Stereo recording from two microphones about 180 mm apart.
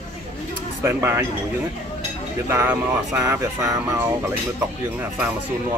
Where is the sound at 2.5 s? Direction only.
15° right (ahead or behind).